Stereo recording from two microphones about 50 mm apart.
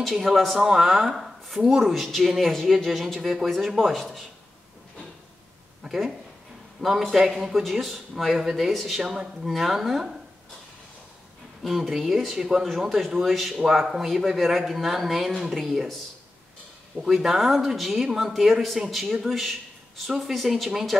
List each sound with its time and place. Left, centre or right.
0.0 s a man's voice: centre
5.9 s a man's voice: centre
11.6 s a man's voice: centre
12.4 s a man's voice: centre
17.0 s a man's voice: centre